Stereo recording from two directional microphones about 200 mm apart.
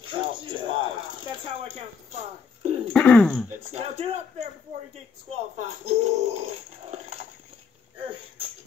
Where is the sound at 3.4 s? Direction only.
30° right (ahead or behind).